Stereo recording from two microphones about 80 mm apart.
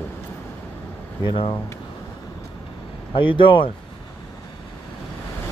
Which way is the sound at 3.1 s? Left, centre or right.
Left.